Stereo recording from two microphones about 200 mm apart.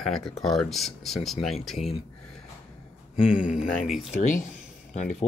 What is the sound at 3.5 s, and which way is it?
Speech, centre (ahead or behind).